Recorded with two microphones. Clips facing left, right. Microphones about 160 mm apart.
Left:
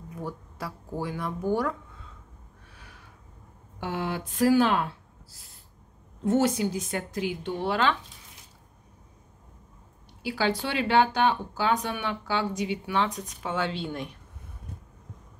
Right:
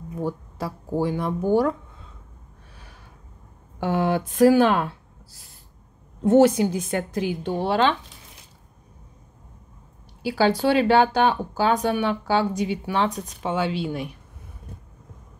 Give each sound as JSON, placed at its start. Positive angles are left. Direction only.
{"t": 0.2, "sound": "speech", "side_deg": -25}
{"t": 3.8, "sound": "a woman's voice", "side_deg": -50}
{"t": 6.2, "sound": "a woman's voice", "side_deg": -60}
{"t": 7.4, "sound": "speech", "side_deg": -35}
{"t": 10.2, "sound": "speech", "side_deg": -35}
{"t": 13.5, "sound": "speech", "side_deg": -10}